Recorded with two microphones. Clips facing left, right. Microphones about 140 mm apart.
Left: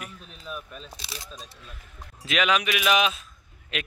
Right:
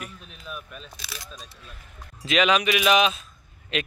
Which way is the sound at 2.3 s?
Centre (ahead or behind).